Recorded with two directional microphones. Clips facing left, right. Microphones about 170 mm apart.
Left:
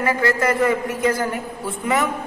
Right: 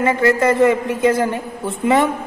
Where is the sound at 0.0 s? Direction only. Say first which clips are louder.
Right 4 dB; 25° right (ahead or behind).